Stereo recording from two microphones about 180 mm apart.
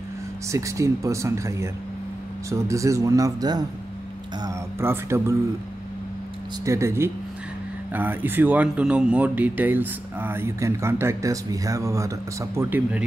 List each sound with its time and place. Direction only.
0.5 s speech: 15° right (ahead or behind)
6.6 s speech: 15° right (ahead or behind)